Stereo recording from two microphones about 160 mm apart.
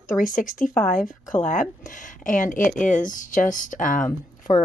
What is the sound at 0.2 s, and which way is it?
Speech, 55° left (ahead or behind).